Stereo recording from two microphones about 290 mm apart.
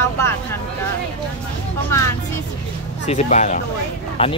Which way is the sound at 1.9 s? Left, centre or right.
Centre.